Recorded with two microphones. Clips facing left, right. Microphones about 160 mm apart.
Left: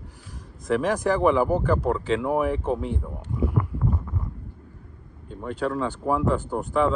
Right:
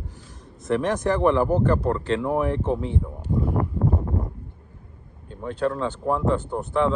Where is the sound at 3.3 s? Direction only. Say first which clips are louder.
Right 3 dB; 40° right (ahead or behind).